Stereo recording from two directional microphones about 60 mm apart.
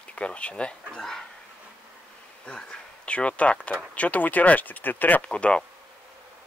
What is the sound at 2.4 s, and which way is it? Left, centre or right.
Speech, centre.